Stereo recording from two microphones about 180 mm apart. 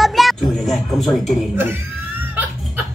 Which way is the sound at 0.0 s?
Centre (ahead or behind).